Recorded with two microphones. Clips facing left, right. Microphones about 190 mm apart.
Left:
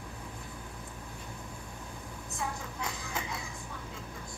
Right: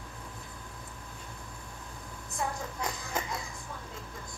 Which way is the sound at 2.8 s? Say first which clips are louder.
Right 3 dB; 45° right (ahead or behind).